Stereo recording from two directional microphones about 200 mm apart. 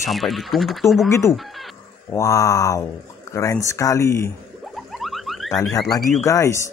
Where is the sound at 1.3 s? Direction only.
Centre (ahead or behind).